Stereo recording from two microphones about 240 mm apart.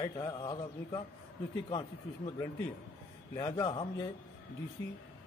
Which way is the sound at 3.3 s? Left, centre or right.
Centre.